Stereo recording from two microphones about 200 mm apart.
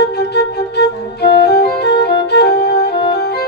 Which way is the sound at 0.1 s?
55° left (ahead or behind).